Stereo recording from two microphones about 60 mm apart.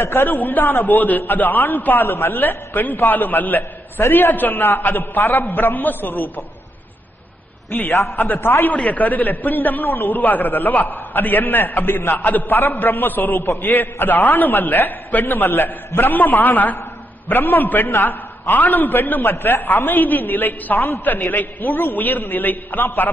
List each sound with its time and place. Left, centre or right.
0.0 s a man's voice: left
7.7 s a man's voice: left
8.7 s a man's voice: left